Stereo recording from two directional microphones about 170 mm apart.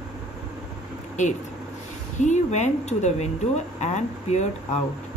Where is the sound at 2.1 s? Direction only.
45° left (ahead or behind).